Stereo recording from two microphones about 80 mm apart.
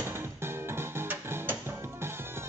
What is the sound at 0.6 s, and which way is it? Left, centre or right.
Music, right.